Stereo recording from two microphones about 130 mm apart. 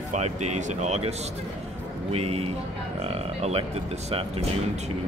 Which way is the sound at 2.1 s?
50° right (ahead or behind).